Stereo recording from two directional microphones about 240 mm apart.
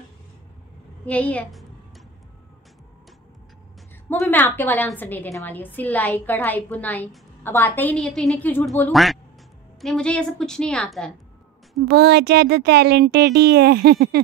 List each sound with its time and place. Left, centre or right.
1.0 s a woman's voice: centre
4.1 s a woman's voice: centre
11.9 s speech: right